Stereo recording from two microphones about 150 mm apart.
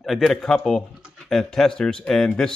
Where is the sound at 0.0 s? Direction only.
Centre (ahead or behind).